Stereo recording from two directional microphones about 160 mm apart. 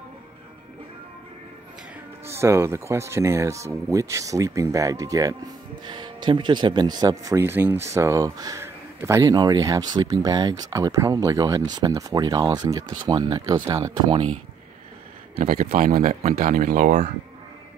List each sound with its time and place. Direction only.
2.2 s speech: 15° right (ahead or behind)
15.3 s speech: 65° right (ahead or behind)
15.7 s a man's voice: 55° right (ahead or behind)